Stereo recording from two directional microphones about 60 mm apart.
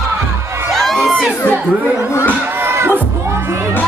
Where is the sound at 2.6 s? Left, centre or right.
Right.